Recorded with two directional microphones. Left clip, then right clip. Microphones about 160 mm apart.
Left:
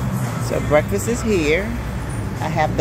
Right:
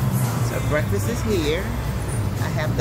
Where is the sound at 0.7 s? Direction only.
35° left (ahead or behind).